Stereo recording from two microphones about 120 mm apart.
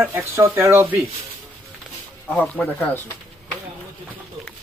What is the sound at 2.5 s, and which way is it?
Speech, 15° left (ahead or behind).